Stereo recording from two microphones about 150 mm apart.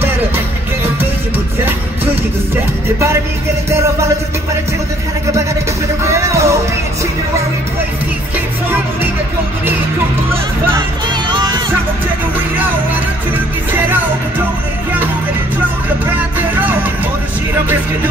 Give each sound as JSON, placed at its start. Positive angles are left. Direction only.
{"t": 3.7, "sound": "music", "side_deg": -20}
{"t": 6.0, "sound": "music", "side_deg": -20}
{"t": 11.2, "sound": "music", "side_deg": -30}
{"t": 13.7, "sound": "music", "side_deg": -15}
{"t": 16.3, "sound": "music", "side_deg": -15}